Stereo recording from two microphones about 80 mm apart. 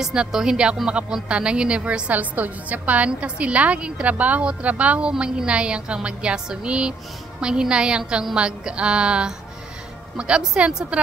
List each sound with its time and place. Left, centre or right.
0.0 s a woman's voice: centre